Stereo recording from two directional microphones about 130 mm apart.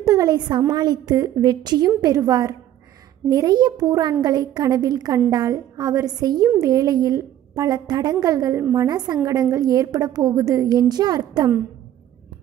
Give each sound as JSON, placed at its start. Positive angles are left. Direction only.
{"t": 0.0, "sound": "a woman's voice", "side_deg": -30}